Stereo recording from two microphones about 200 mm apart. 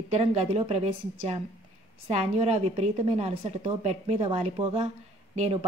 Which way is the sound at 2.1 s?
30° right (ahead or behind).